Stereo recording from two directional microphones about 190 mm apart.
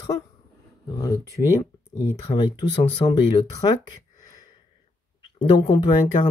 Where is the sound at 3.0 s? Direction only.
25° left (ahead or behind).